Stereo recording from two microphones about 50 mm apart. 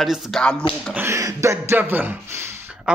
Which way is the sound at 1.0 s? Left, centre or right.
Right.